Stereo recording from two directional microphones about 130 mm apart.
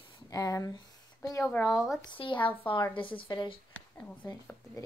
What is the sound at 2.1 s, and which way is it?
Speech, 40° left (ahead or behind).